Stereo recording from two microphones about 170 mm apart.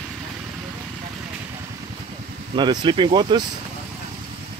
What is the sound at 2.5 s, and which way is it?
Speech, 25° right (ahead or behind).